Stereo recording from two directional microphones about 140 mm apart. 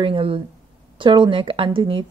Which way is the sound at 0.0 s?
40° right (ahead or behind).